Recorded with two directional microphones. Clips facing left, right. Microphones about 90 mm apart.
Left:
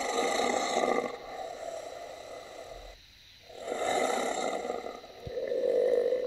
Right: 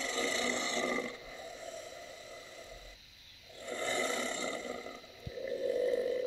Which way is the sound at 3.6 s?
20° left (ahead or behind).